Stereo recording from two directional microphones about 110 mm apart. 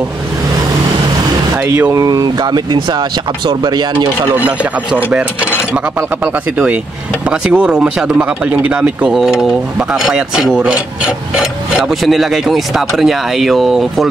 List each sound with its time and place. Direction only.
1.6 s speech: 15° right (ahead or behind)
1.9 s speech: 30° right (ahead or behind)
4.5 s speech: 10° right (ahead or behind)
7.2 s speech: 10° right (ahead or behind)